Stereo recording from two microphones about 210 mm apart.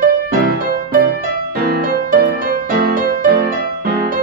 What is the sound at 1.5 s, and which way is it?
Music, 45° right (ahead or behind).